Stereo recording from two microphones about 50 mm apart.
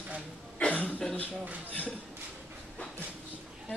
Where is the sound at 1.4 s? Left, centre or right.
Right.